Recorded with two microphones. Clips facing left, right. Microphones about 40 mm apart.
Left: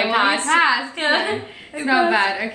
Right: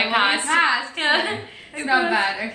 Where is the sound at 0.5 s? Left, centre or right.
Left.